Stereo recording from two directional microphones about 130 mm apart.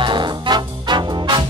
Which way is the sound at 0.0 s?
35° right (ahead or behind).